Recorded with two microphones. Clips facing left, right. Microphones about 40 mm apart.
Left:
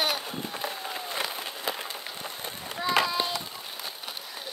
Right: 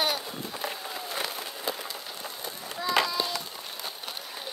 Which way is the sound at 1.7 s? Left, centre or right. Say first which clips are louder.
Left 1 dB; left.